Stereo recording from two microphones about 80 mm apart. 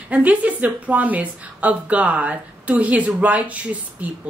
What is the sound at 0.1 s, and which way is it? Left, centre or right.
A woman's voice, centre.